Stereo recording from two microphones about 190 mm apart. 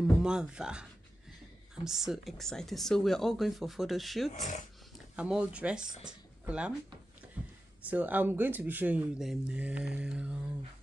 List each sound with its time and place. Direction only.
0.0 s speech: 5° right (ahead or behind)
1.9 s speech: centre (ahead or behind)
4.3 s speech: 40° left (ahead or behind)
5.1 s speech: 5° right (ahead or behind)
7.4 s a sound: 5° right (ahead or behind)
7.9 s speech: 10° right (ahead or behind)